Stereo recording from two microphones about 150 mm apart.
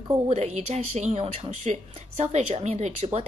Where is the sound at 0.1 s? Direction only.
45° right (ahead or behind).